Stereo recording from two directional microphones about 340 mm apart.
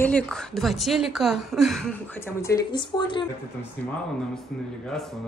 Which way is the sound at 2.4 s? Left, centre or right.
Centre.